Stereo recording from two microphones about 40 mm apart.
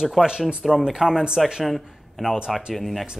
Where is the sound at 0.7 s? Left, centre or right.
Centre.